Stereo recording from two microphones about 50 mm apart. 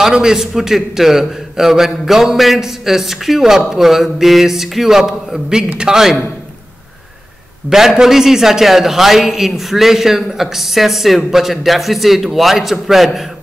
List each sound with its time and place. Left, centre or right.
0.0 s a man's voice: centre
7.7 s a man's voice: centre